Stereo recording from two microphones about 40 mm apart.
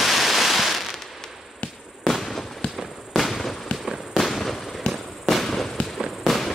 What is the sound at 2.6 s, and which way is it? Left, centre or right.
Fireworks, left.